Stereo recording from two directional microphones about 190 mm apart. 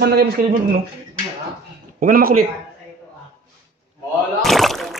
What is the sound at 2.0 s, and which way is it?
Speech, 50° right (ahead or behind).